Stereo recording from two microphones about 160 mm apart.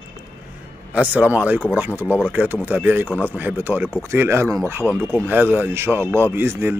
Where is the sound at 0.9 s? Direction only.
10° right (ahead or behind).